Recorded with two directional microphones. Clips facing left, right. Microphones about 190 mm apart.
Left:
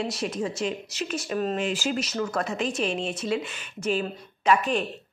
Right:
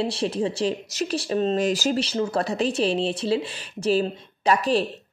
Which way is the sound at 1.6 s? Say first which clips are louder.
Right 5 dB; 40° right (ahead or behind).